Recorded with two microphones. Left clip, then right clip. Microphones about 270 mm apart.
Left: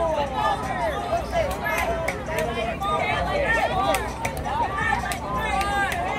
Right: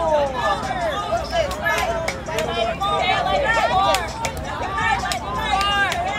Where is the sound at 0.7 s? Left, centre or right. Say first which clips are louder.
Right 3 dB; right.